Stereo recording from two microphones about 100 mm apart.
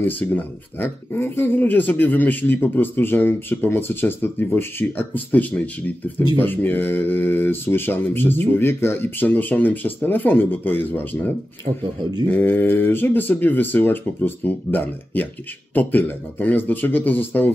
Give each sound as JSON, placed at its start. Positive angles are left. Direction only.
{"t": 0.0, "sound": "speech", "side_deg": 20}
{"t": 12.3, "sound": "speech", "side_deg": 20}